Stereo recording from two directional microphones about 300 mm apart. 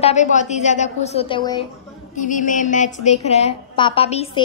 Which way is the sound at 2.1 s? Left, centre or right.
Left.